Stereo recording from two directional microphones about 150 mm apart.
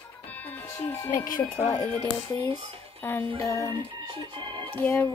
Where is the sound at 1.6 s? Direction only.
15° left (ahead or behind).